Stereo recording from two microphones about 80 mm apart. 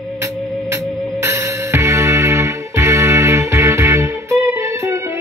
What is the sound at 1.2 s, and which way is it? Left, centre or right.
Music, right.